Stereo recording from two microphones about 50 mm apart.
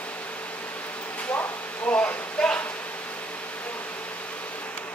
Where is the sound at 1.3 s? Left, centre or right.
Left.